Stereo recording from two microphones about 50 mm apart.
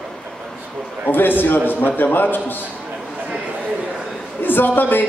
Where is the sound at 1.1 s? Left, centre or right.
Left.